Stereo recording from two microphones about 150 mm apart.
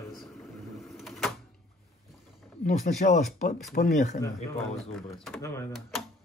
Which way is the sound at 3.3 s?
60° left (ahead or behind).